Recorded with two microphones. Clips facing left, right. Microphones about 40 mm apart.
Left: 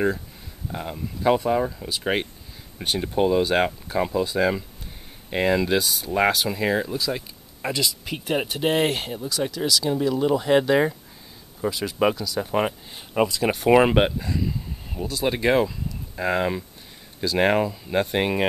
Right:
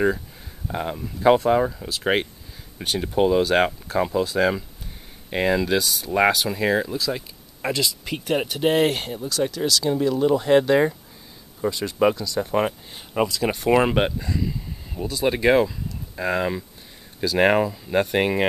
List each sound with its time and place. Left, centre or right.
0.7 s speech: centre
3.0 s speech: centre
3.8 s speech: centre
4.4 s speech: centre